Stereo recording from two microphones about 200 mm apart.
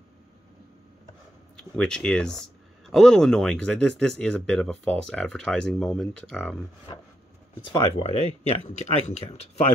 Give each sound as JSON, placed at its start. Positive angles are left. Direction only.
{"t": 1.6, "sound": "speech", "side_deg": 5}
{"t": 6.9, "sound": "a sound", "side_deg": 20}
{"t": 7.7, "sound": "speech", "side_deg": 30}